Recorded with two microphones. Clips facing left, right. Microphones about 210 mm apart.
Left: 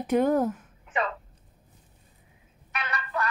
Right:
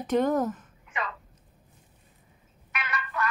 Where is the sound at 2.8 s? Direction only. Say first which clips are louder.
Left 1 dB; 35° left (ahead or behind).